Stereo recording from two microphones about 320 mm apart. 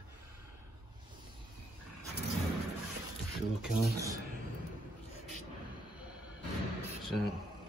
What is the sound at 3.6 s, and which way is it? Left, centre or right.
Speech, centre.